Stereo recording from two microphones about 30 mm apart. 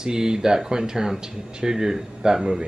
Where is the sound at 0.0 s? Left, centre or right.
Right.